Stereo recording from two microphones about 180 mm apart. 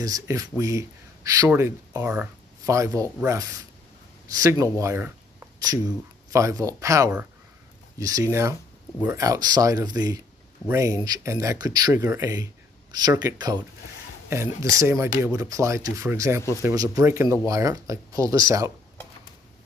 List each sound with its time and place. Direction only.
0.0 s speech: 20° right (ahead or behind)
4.7 s a sound: 15° right (ahead or behind)
6.3 s speech: 15° right (ahead or behind)
14.6 s speech: 15° right (ahead or behind)